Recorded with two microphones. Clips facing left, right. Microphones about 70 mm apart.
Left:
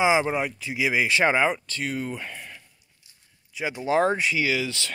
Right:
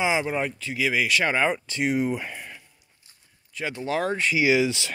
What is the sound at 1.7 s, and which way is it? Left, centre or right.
Speech, centre.